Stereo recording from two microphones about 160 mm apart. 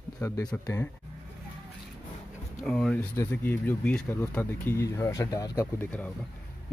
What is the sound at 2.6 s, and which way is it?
Speech, 5° left (ahead or behind).